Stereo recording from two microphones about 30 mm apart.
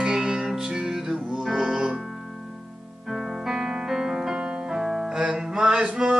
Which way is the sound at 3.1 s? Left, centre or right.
Centre.